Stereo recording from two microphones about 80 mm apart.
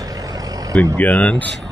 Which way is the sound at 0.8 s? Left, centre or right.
Centre.